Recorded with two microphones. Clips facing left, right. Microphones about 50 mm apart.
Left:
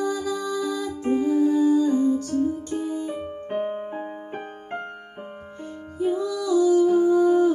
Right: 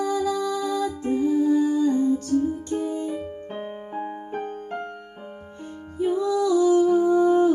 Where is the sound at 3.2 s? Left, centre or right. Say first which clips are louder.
Left 5 dB; left.